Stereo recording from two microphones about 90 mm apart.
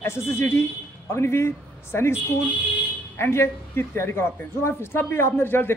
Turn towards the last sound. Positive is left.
turn(degrees=25)  # may be behind; listen again after turning